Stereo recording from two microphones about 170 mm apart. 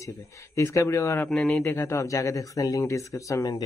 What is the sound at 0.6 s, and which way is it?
Speech, 15° left (ahead or behind).